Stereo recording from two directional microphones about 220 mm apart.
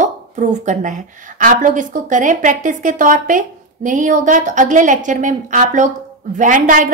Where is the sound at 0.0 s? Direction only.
35° right (ahead or behind).